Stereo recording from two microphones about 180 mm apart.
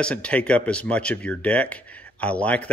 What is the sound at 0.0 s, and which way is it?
A man's voice, 5° left (ahead or behind).